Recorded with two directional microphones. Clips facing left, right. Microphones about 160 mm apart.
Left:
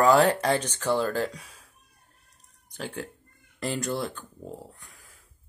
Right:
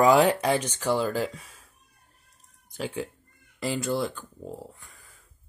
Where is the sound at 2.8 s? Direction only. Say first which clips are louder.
Right 3 dB; 5° right (ahead or behind).